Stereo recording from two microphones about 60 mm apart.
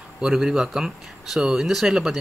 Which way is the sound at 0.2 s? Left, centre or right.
Centre.